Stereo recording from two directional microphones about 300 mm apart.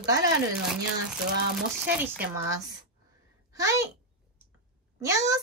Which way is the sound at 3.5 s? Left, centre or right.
Centre.